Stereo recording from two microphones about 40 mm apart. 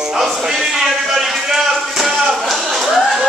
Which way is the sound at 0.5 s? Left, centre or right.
Centre.